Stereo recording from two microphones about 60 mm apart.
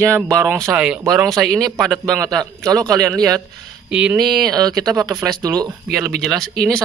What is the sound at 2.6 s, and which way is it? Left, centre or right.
Speech, right.